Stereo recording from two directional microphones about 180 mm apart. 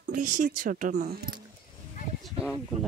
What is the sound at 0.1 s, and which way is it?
Speech, 45° right (ahead or behind).